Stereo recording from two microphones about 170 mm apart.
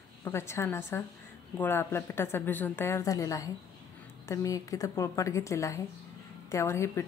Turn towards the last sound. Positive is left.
turn(degrees=15)  # may be behind; listen again after turning